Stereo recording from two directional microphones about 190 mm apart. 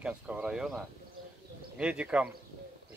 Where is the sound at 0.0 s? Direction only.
5° right (ahead or behind).